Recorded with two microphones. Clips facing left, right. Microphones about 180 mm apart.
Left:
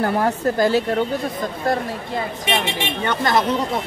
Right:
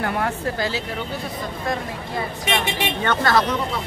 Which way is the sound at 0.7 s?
50° left (ahead or behind).